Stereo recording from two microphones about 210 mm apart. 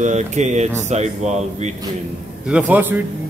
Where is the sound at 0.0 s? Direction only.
35° right (ahead or behind).